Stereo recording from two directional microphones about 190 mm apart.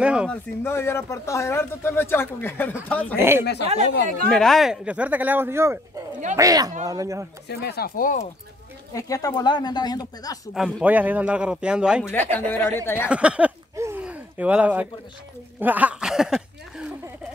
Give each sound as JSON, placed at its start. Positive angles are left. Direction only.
{"t": 0.0, "sound": "a man's voice", "side_deg": -5}
{"t": 0.3, "sound": "speech", "side_deg": 10}
{"t": 3.2, "sound": "speech", "side_deg": -10}
{"t": 4.3, "sound": "speech", "side_deg": 0}
{"t": 7.4, "sound": "speech", "side_deg": 55}
{"t": 8.9, "sound": "speech", "side_deg": 20}
{"t": 10.5, "sound": "a man's voice", "side_deg": -5}
{"t": 12.0, "sound": "speech", "side_deg": 10}
{"t": 13.1, "sound": "a sound", "side_deg": -5}
{"t": 15.6, "sound": "speech", "side_deg": -10}